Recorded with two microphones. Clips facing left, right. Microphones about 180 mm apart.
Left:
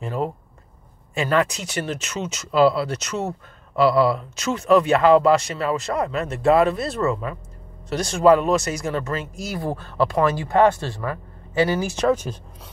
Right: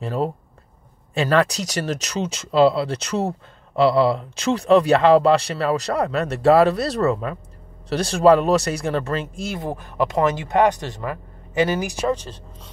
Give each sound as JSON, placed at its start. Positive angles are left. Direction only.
{"t": 0.0, "sound": "speech", "side_deg": -35}
{"t": 12.1, "sound": "speech", "side_deg": 10}